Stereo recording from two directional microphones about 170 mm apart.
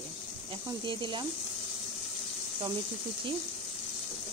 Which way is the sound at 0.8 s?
30° right (ahead or behind).